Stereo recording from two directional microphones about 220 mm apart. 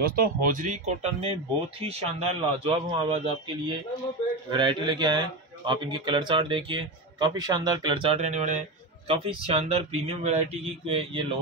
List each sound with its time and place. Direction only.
0.0 s speech: 40° right (ahead or behind); by 11.2 s 25° right (ahead or behind)